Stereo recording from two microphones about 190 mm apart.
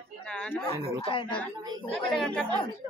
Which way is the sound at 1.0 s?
25° left (ahead or behind).